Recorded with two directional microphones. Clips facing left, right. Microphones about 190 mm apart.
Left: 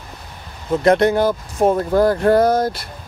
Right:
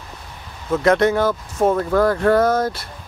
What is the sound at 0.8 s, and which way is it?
Speech, 35° left (ahead or behind).